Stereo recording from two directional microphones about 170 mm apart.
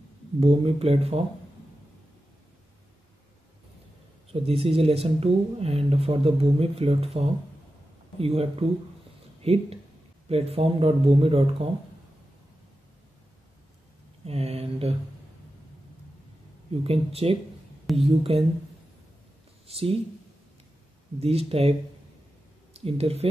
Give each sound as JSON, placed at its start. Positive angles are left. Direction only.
{"t": 0.4, "sound": "speech", "side_deg": -35}
{"t": 4.3, "sound": "speech", "side_deg": -35}
{"t": 14.2, "sound": "speech", "side_deg": -35}
{"t": 16.8, "sound": "speech", "side_deg": -35}
{"t": 19.7, "sound": "speech", "side_deg": -35}
{"t": 21.2, "sound": "speech", "side_deg": -35}
{"t": 22.8, "sound": "speech", "side_deg": -35}